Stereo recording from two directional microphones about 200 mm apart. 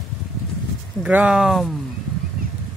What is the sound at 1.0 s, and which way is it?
Speech, 5° right (ahead or behind).